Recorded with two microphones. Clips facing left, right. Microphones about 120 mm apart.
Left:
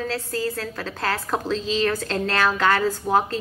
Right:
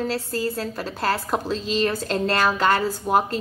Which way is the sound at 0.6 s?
25° right (ahead or behind).